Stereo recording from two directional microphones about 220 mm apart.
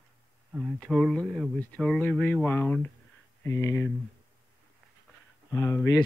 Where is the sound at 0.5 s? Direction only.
10° right (ahead or behind).